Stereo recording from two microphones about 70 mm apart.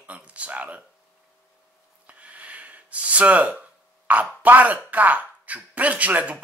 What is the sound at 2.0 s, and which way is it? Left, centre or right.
Gasp, centre.